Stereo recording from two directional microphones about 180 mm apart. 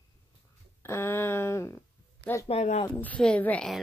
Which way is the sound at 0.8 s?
15° left (ahead or behind).